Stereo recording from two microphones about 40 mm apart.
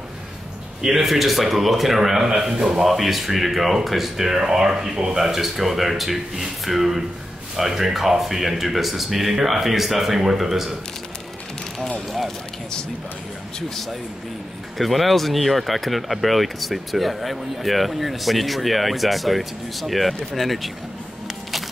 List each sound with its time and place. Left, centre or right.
0.8 s speech: centre
2.8 s speech: centre
14.8 s speech: centre